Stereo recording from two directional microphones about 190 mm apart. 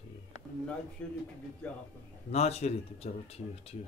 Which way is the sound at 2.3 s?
35° left (ahead or behind).